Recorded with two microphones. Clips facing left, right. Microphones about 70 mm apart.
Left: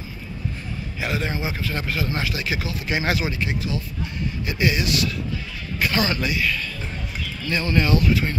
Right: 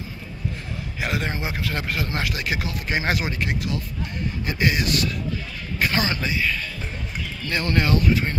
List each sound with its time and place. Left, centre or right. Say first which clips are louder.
1.0 s speech: left 1 dB; right
5.8 s a sound: left 1 dB; right
6.0 s speech: left 1 dB; right
7.4 s speech: left 1 dB; right